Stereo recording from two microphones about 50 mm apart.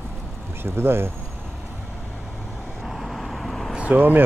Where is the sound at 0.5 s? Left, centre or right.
Right.